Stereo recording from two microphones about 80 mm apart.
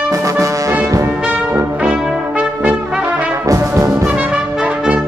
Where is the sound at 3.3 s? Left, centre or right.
Right.